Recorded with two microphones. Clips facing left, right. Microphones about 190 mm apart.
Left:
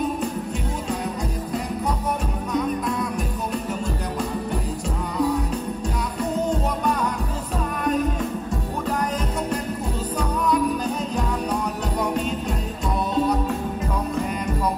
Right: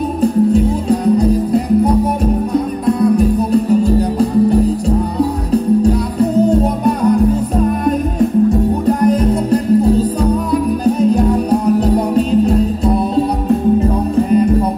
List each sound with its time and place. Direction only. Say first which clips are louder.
0.2 s music: right 15 dB; 35° right (ahead or behind)
8.8 s music: right 12 dB; 35° right (ahead or behind)